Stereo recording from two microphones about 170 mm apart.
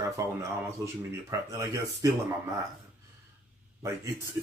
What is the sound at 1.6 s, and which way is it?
Speech, 20° right (ahead or behind).